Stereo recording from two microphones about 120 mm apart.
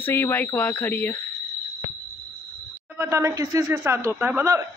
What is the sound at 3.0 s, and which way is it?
Speech, 25° right (ahead or behind).